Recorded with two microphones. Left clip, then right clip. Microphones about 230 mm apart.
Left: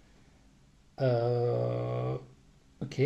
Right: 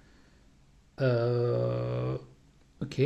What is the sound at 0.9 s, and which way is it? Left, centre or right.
Speech, right.